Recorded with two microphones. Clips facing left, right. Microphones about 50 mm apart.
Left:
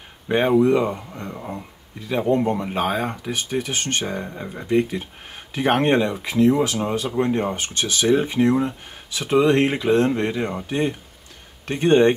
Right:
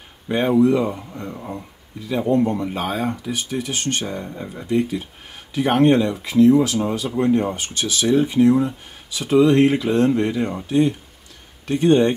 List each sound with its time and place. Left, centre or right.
0.5 s speech: left
0.9 s speech: centre
2.3 s speech: left
4.0 s speech: left
4.6 s speech: left